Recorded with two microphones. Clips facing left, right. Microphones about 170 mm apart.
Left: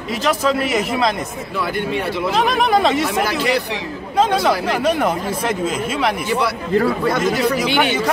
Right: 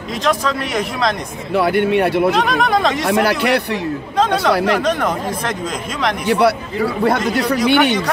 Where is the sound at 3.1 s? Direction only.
65° right (ahead or behind).